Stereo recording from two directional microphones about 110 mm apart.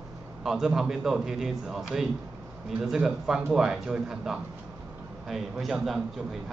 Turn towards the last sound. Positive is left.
turn(degrees=0)  # may be behind; listen again after turning